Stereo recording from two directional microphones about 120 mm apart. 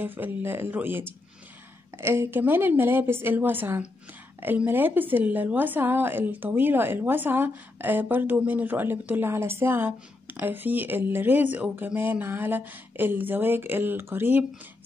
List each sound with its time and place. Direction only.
0.0 s a woman's voice: 15° right (ahead or behind)